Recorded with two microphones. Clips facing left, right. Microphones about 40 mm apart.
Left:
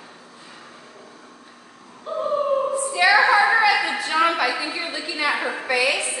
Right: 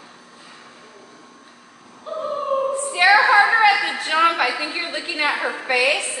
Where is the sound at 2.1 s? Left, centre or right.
Centre.